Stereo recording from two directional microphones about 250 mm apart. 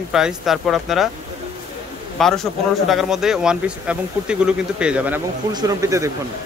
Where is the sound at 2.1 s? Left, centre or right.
Centre.